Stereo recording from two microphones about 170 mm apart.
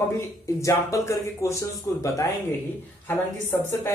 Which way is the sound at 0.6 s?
20° left (ahead or behind).